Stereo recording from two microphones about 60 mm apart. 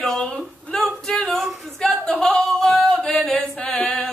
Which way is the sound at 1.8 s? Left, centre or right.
Centre.